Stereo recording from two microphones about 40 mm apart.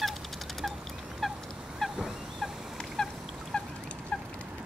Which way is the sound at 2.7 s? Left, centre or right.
Centre.